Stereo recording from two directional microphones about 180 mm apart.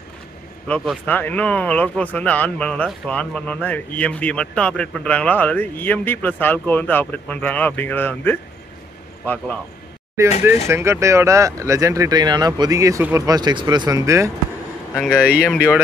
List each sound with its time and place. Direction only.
0.7 s speech: 5° left (ahead or behind)
10.7 s speech: 15° right (ahead or behind)
15.0 s a man's voice: centre (ahead or behind)
15.4 s speech: 5° left (ahead or behind)